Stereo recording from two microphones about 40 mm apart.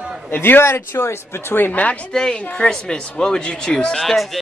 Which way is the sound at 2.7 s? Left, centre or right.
Left.